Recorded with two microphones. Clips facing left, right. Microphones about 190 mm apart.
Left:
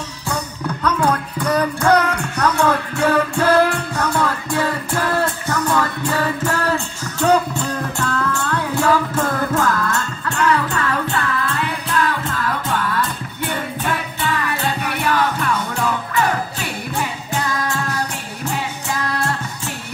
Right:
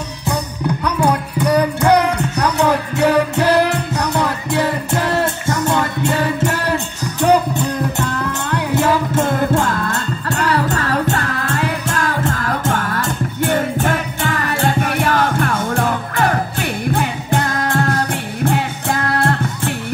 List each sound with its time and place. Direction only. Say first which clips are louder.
0.3 s music: right 4 dB; 15° right (ahead or behind); by 19.7 s 55° right (ahead or behind)